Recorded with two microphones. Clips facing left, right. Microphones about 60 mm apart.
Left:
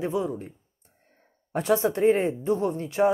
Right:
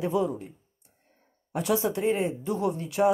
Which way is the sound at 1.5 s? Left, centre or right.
Left.